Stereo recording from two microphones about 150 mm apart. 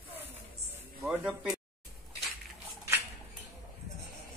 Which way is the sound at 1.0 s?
10° right (ahead or behind).